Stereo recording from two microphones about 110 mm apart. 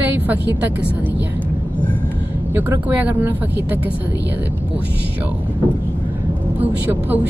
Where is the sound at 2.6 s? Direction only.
15° right (ahead or behind).